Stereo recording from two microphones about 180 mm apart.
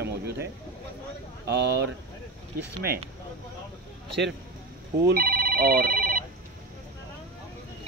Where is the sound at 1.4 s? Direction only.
70° right (ahead or behind).